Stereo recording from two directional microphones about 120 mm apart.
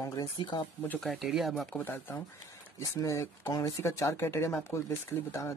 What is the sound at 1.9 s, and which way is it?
Speech, 20° left (ahead or behind).